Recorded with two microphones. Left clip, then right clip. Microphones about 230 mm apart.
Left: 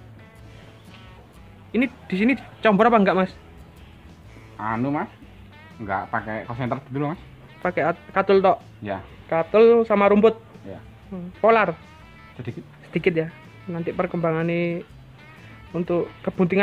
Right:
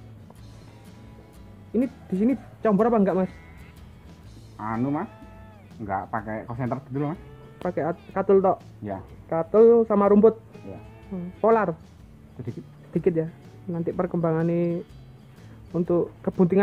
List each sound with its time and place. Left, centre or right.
1.7 s speech: centre
4.6 s speech: left
7.6 s speech: centre
9.9 s speech: centre
12.9 s speech: centre